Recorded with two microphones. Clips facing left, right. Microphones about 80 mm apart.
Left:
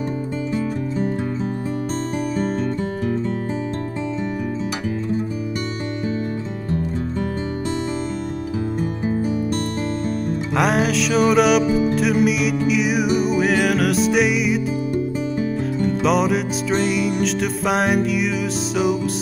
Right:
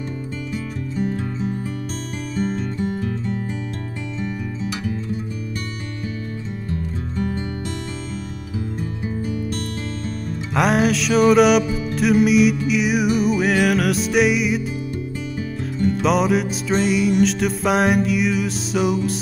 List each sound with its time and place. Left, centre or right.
9.0 s music: left
10.5 s music: centre
15.8 s music: centre